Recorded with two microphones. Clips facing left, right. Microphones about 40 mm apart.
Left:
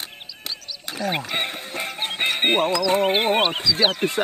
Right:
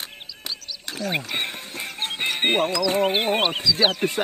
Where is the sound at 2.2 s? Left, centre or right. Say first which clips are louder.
Left 2 dB; centre.